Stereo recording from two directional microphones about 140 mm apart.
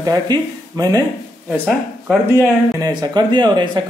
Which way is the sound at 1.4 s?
5° right (ahead or behind).